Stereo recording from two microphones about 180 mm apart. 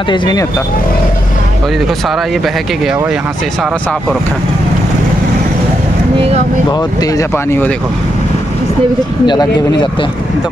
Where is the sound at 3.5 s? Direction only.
5° left (ahead or behind).